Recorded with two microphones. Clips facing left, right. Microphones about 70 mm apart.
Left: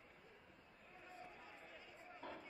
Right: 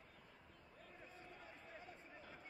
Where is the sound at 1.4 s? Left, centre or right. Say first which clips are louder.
Right 2 dB; right.